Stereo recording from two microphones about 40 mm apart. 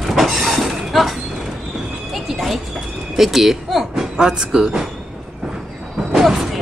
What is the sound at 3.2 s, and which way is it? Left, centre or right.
Speech, centre.